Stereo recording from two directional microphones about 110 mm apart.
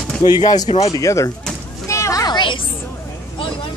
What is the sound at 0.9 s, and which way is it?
Speech, 30° left (ahead or behind).